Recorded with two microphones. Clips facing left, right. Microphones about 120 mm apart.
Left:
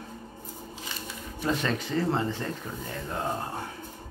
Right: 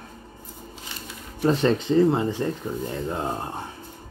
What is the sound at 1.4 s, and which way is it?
Speech, 30° right (ahead or behind).